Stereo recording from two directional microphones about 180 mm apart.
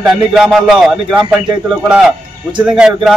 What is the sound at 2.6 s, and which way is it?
Speech, 5° right (ahead or behind).